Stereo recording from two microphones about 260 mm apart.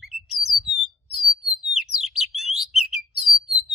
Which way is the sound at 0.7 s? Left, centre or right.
Right.